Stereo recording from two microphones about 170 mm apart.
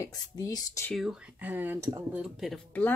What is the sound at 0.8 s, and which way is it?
Speech, centre (ahead or behind).